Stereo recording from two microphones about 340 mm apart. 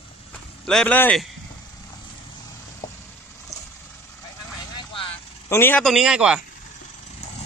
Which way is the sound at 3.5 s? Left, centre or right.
Centre.